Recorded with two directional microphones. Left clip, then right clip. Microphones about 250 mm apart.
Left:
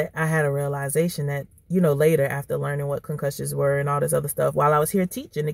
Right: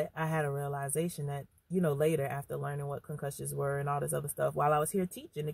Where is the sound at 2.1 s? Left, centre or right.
Right.